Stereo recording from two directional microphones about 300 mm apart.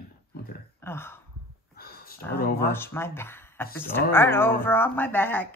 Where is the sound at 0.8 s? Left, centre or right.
Centre.